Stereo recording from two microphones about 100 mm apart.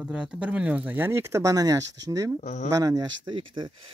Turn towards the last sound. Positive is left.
turn(degrees=-55)  # may be behind; listen again after turning